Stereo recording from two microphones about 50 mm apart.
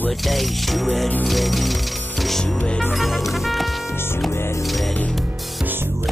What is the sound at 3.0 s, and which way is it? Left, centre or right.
Music, centre.